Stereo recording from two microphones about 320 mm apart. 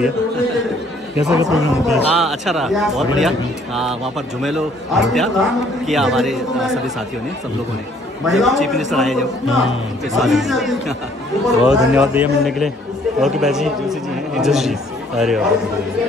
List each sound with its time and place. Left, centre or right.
1.2 s a man's voice: centre
8.3 s a man's voice: centre